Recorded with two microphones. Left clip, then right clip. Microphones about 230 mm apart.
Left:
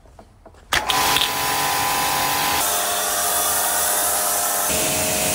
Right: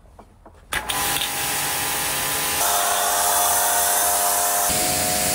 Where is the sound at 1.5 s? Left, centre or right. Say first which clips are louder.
Left 5 dB; centre.